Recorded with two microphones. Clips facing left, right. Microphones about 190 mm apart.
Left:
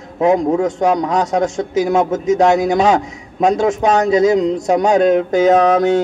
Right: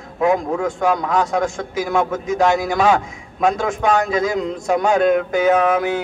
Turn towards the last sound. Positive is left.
turn(degrees=35)  # may be behind; listen again after turning